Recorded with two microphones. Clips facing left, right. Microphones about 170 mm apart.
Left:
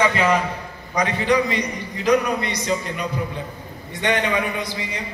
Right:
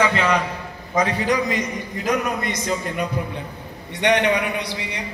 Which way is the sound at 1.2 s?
45° right (ahead or behind).